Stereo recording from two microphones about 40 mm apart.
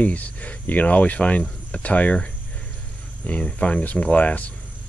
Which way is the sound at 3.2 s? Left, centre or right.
Left.